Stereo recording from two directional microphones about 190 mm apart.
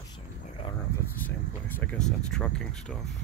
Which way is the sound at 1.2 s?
10° left (ahead or behind).